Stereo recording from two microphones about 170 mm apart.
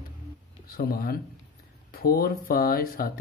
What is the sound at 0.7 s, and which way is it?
Speech, 60° left (ahead or behind).